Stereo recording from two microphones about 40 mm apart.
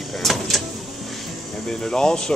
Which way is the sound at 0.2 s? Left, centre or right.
Centre.